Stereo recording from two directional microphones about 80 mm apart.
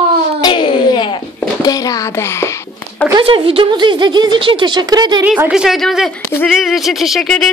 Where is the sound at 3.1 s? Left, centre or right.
Right.